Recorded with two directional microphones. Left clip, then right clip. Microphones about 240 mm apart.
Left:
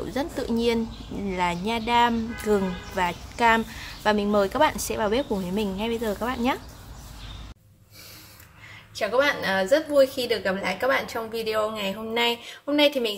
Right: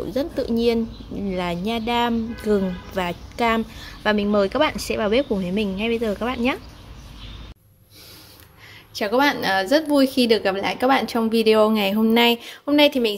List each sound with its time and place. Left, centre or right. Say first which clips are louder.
0.1 s speech: right 5 dB; centre
8.9 s a woman's voice: right 3 dB; right